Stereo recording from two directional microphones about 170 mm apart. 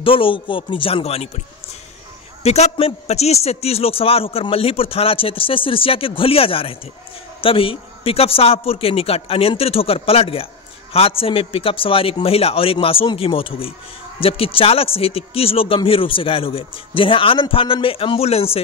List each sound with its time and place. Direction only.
0.0 s a man's voice: 30° left (ahead or behind)
2.4 s a man's voice: 40° left (ahead or behind)